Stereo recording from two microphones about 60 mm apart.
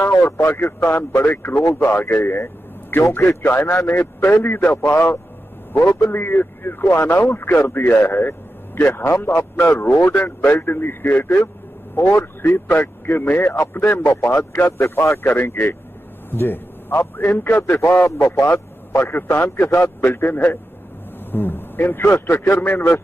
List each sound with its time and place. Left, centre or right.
0.0 s vehicle: left
0.5 s a man's voice: left
4.9 s a man's voice: left
14.7 s speech: left
15.2 s a man's voice: left
18.1 s a man's voice: left